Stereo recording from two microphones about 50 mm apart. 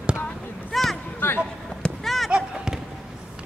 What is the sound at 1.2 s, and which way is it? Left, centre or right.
Basketball bounce, left.